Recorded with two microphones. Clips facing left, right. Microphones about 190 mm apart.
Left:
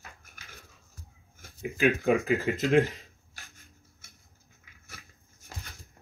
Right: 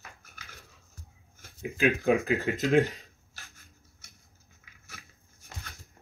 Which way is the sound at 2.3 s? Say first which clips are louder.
Left 1 dB; centre (ahead or behind).